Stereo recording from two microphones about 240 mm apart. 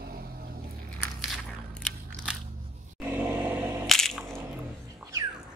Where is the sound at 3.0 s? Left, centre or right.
Centre.